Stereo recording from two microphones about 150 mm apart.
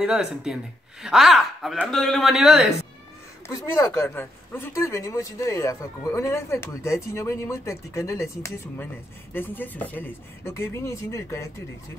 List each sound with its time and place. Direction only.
0.0 s speech: 5° right (ahead or behind)
3.4 s a woman's voice: 20° left (ahead or behind)